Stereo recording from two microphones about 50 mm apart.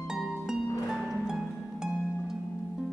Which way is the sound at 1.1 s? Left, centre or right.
Centre.